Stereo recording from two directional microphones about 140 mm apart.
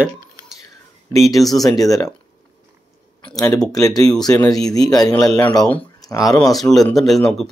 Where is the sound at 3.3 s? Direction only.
25° left (ahead or behind).